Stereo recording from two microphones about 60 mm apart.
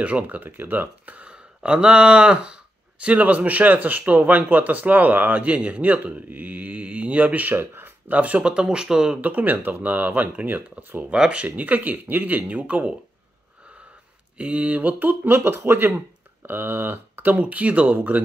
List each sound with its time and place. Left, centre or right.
0.0 s speech: right
9.2 s speech: right
11.1 s speech: right
14.3 s speech: right